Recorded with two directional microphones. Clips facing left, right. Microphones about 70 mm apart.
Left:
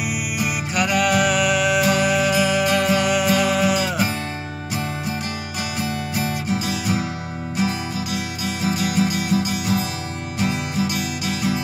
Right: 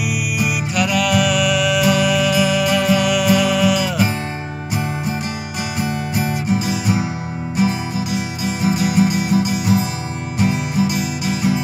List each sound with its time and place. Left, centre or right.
0.5 s music: left
6.1 s music: right
8.6 s music: centre